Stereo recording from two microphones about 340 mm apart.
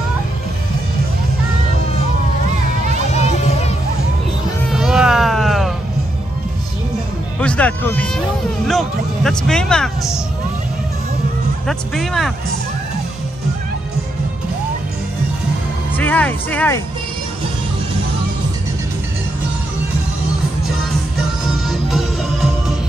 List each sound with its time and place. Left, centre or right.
3.2 s music: centre
4.6 s music: centre
7.3 s music: centre
8.6 s speech: centre
11.6 s speech: centre
16.0 s speech: centre
21.6 s music: centre